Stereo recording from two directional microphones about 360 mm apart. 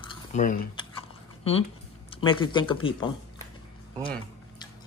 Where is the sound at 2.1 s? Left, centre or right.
Centre.